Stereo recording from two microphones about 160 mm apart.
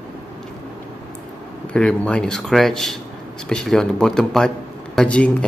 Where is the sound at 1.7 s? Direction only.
5° left (ahead or behind).